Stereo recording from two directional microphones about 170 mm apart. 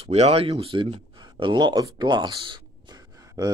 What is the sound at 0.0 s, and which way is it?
Speech, 35° right (ahead or behind).